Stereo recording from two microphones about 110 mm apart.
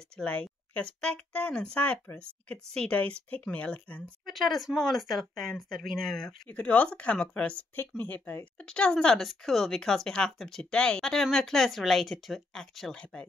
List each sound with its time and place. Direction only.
0.2 s speech: 10° left (ahead or behind)
4.3 s speech: centre (ahead or behind)